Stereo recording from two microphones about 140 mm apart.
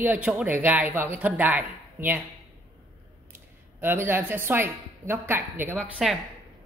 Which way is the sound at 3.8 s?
15° right (ahead or behind).